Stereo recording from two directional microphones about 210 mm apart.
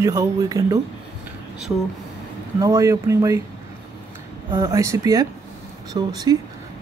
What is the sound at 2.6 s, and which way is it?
Speech, 15° right (ahead or behind).